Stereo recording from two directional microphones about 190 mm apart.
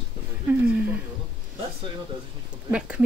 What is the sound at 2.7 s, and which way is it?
Speech, 5° right (ahead or behind).